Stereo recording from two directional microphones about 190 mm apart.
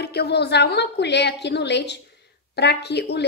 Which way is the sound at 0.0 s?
60° left (ahead or behind).